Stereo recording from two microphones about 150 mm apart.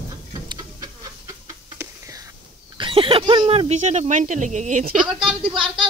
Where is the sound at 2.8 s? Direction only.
35° right (ahead or behind); by 4.9 s 55° right (ahead or behind).